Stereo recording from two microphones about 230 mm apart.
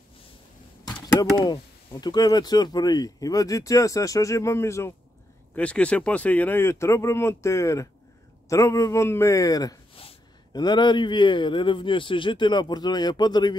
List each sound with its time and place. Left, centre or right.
0.8 s a man's voice: centre